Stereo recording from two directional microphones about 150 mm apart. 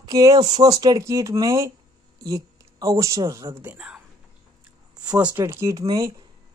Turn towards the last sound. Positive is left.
turn(degrees=-25)  # may be behind; listen again after turning